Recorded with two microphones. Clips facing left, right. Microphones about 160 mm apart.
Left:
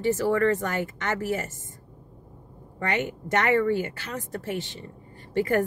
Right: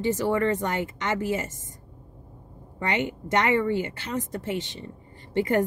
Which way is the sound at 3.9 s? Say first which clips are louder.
Right 3 dB; 20° right (ahead or behind).